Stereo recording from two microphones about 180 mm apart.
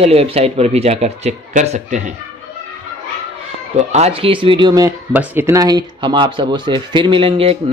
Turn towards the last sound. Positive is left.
turn(degrees=-30)  # may be behind; listen again after turning